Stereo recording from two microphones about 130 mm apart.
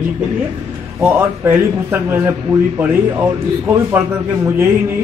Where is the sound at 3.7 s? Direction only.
15° right (ahead or behind).